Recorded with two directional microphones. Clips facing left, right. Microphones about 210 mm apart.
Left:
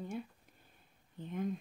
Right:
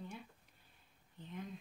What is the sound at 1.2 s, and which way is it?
Speech, 50° left (ahead or behind).